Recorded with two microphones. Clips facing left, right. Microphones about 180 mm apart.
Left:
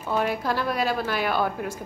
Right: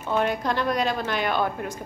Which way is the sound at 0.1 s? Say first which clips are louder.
Right 1 dB; 5° left (ahead or behind).